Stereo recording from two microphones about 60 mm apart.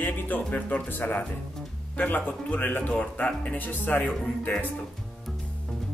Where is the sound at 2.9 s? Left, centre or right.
Centre.